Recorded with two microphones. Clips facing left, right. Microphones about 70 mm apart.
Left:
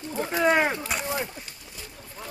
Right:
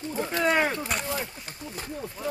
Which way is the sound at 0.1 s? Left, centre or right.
Centre.